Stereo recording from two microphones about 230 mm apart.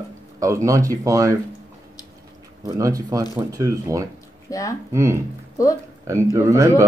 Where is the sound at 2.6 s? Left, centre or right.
Centre.